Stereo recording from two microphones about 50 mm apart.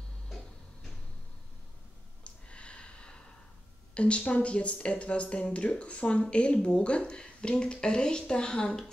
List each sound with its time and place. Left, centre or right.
2.2 s snort: left
3.9 s speech: left